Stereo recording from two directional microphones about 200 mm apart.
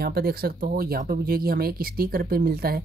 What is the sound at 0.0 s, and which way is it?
Speech, 50° right (ahead or behind).